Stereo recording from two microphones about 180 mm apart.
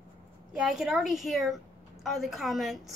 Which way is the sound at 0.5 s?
5° right (ahead or behind).